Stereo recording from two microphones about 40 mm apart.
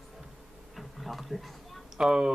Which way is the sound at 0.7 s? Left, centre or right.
Centre.